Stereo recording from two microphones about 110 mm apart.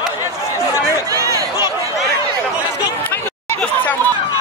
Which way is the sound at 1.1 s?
30° right (ahead or behind).